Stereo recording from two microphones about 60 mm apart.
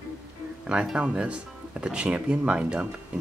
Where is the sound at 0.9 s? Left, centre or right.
Centre.